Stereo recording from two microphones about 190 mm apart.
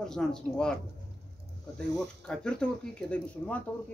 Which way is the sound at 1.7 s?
5° left (ahead or behind).